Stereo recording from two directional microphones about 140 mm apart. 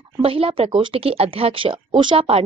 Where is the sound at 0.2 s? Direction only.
40° right (ahead or behind).